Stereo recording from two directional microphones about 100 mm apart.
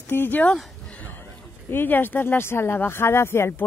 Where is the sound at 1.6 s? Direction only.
20° left (ahead or behind).